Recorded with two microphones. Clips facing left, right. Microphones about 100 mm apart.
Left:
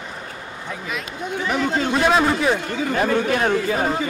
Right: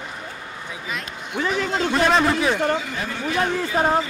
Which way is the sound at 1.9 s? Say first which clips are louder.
Even; 5° left (ahead or behind).